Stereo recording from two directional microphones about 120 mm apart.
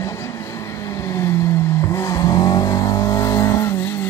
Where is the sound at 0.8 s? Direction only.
25° left (ahead or behind).